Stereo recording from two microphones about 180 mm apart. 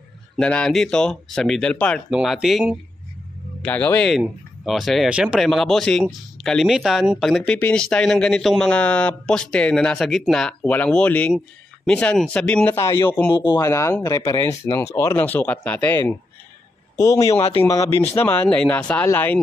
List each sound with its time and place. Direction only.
0.4 s a man's voice: 5° left (ahead or behind)
17.3 s speech: 35° left (ahead or behind)
17.6 s speech: 15° left (ahead or behind)